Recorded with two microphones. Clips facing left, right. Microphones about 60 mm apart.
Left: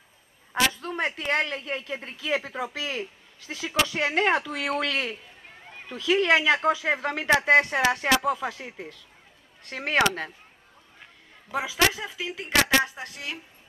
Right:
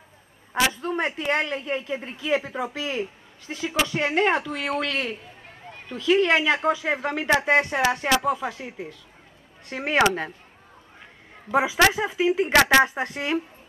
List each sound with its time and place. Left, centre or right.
0.5 s a man's voice: centre
11.5 s speech: right
12.5 s a woman's voice: right